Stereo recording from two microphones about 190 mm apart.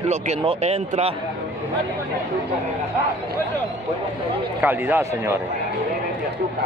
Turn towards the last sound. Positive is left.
turn(degrees=-10)  # may be behind; listen again after turning